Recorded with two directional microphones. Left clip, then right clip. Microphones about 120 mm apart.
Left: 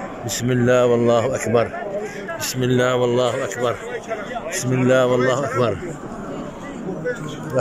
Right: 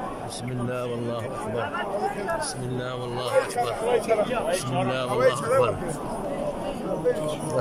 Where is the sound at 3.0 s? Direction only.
90° left.